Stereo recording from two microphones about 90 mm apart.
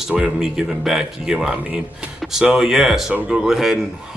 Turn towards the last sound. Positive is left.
turn(degrees=-5)  # may be behind; listen again after turning